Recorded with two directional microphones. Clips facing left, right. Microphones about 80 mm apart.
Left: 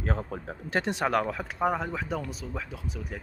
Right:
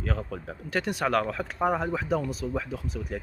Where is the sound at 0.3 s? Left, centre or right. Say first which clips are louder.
Even; left.